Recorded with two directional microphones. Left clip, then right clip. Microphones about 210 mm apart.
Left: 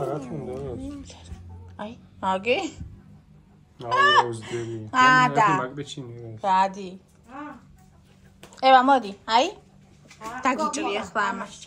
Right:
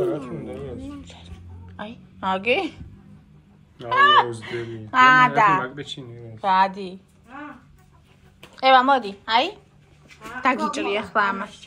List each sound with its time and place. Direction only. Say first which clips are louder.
1.0 s music: right 2 dB; 15° left (ahead or behind)
1.8 s a woman's voice: even; 15° left (ahead or behind)
3.9 s a woman's voice: right 3 dB; 15° left (ahead or behind)
8.5 s a woman's voice: right 1 dB; 20° left (ahead or behind)